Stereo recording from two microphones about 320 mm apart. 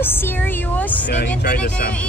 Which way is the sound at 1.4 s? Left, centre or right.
Left.